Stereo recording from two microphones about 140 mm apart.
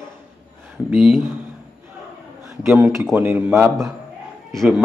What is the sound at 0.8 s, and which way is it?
Speech, 10° right (ahead or behind).